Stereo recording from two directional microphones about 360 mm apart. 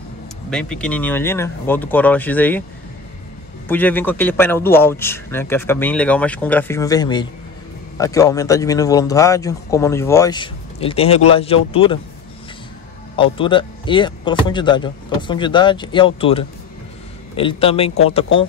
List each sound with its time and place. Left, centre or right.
0.5 s a man's voice: centre
3.6 s a man's voice: centre
13.1 s a man's voice: centre